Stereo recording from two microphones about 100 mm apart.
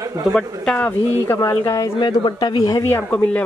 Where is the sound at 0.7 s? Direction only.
20° left (ahead or behind).